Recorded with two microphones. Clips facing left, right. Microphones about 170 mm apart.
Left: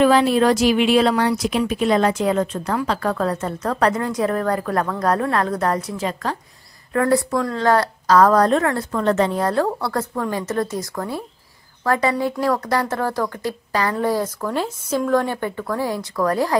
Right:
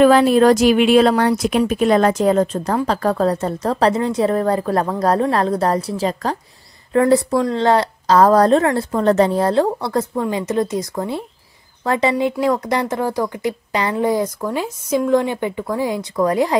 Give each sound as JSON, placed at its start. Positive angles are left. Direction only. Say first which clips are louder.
{"t": 0.0, "sound": "a woman's voice", "louder": "right 4 dB", "side_deg": -50}